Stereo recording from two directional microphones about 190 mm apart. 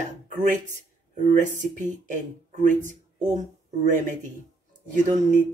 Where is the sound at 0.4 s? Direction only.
40° right (ahead or behind).